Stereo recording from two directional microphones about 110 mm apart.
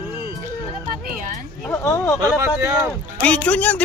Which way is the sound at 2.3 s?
30° right (ahead or behind).